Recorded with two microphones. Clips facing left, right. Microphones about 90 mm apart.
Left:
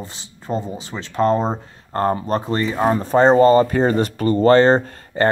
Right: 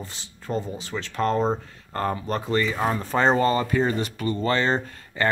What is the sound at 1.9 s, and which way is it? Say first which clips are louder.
Speech: left 7 dB; 40° left (ahead or behind).